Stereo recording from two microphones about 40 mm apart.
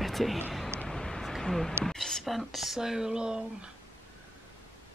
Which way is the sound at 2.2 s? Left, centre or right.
Centre.